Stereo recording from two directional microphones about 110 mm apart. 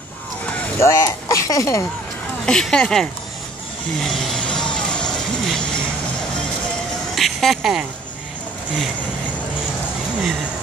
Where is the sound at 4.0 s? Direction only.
Centre (ahead or behind).